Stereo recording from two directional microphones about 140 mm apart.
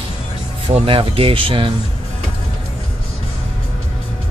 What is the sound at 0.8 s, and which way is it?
Speech, 40° right (ahead or behind).